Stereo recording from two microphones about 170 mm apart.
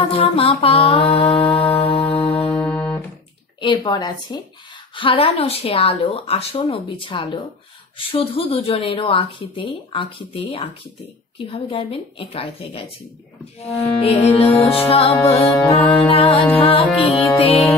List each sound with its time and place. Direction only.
0.1 s speech: 35° left (ahead or behind)
1.5 s music: 10° left (ahead or behind)
3.6 s a woman's voice: 25° left (ahead or behind)
14.0 s speech: 35° left (ahead or behind)